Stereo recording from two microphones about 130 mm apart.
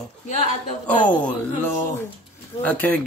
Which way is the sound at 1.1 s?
10° left (ahead or behind).